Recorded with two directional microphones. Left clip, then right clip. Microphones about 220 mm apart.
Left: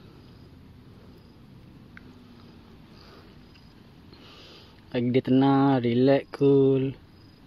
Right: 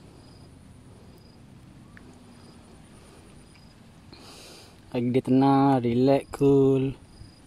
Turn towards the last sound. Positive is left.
turn(degrees=-15)  # may be behind; listen again after turning